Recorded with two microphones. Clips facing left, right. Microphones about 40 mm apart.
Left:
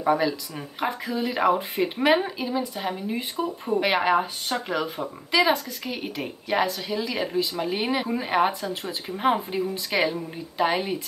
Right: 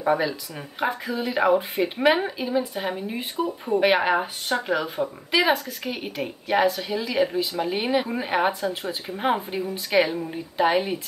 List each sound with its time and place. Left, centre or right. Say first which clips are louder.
0.0 s speech: even; centre
5.3 s a woman's voice: even; centre
5.9 s speech: right 2 dB; centre